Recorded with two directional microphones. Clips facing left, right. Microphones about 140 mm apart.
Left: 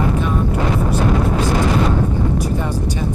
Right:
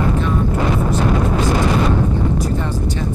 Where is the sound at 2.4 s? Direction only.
10° left (ahead or behind).